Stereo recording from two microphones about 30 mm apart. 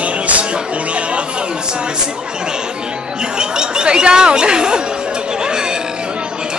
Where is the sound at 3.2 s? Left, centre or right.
Right.